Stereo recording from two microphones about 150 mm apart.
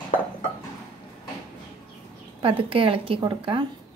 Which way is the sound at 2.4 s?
35° right (ahead or behind).